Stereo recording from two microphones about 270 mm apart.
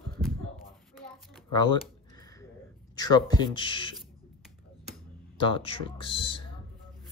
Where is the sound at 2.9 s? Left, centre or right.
Centre.